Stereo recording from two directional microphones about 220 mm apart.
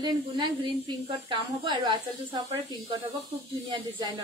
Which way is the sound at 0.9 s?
20° right (ahead or behind).